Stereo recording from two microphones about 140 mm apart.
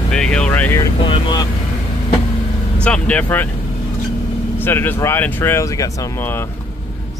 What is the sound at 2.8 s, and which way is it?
Speech, 10° left (ahead or behind).